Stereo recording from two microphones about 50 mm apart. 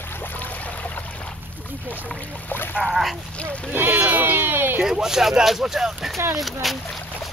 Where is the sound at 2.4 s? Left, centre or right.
Left.